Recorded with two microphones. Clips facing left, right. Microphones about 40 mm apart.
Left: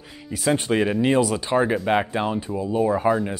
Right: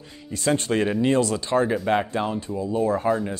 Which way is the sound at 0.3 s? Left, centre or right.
Centre.